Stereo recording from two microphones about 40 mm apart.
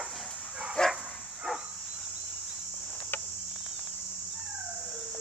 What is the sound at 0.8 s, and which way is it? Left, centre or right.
Dog, centre.